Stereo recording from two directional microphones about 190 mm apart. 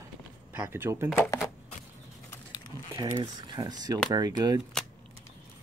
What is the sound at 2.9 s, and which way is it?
Speech, 20° right (ahead or behind).